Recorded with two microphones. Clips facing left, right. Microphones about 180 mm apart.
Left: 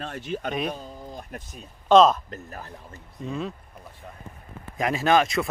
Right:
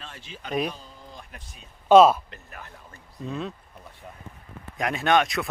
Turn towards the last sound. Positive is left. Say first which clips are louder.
# left 1 dB
turn(degrees=0)  # may be behind; listen again after turning